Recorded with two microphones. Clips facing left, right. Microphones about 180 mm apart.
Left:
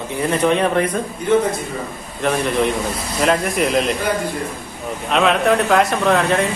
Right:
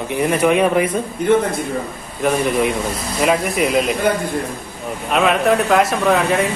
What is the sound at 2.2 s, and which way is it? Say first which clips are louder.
Speech: right 1 dB; 5° right (ahead or behind).